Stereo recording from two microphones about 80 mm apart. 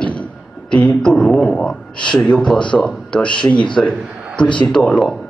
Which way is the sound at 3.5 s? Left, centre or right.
Left.